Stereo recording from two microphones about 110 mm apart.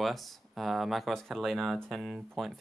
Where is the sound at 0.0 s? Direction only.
Centre (ahead or behind).